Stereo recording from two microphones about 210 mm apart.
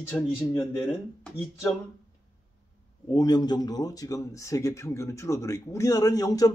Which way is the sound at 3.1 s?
20° left (ahead or behind).